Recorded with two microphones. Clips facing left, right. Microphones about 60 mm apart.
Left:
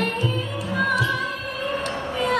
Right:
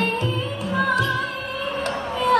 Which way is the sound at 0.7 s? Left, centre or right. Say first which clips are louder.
Right 1 dB; right.